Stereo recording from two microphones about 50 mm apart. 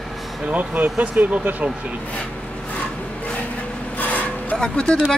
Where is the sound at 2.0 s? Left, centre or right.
Left.